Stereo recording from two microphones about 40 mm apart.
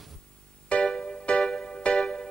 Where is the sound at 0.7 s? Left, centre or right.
Left.